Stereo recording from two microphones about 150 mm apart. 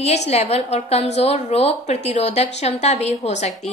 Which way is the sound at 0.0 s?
45° left (ahead or behind).